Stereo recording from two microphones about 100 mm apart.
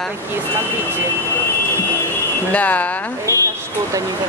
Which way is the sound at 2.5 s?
15° left (ahead or behind).